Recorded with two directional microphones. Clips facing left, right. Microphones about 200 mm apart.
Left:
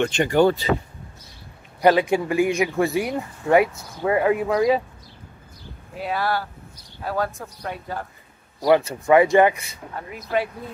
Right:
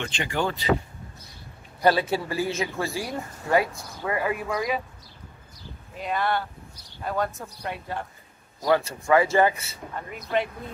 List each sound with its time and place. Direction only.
0.0 s speech: 45° left (ahead or behind)
1.8 s speech: 15° left (ahead or behind)
5.9 s speech: 5° left (ahead or behind)
7.6 s speech: centre (ahead or behind)
8.6 s speech: 20° left (ahead or behind)
10.1 s speech: 5° left (ahead or behind)